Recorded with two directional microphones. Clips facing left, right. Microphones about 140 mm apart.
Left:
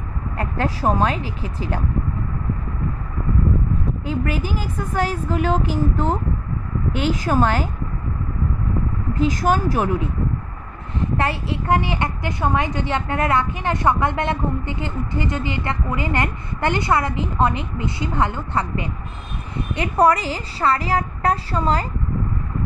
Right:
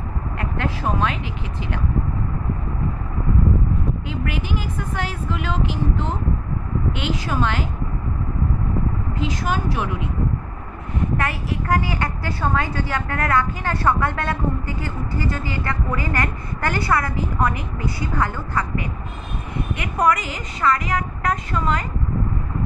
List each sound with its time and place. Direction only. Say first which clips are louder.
0.4 s a woman's voice: left 4 dB; 35° left (ahead or behind)
4.1 s a woman's voice: left 6 dB; 40° left (ahead or behind)
9.1 s speech: left 7 dB; 45° left (ahead or behind)
11.0 s a woman's voice: left 2 dB; 30° left (ahead or behind)